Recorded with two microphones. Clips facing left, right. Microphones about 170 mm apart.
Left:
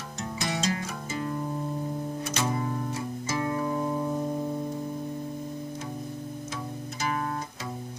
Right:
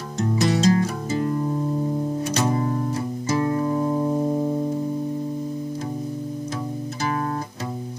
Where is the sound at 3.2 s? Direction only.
40° right (ahead or behind).